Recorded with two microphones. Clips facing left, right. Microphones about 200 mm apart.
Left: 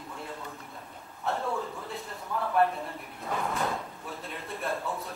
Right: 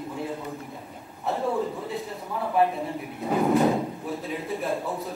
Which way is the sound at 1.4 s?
20° right (ahead or behind).